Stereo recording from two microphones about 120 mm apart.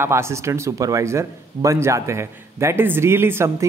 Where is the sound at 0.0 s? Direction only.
20° right (ahead or behind).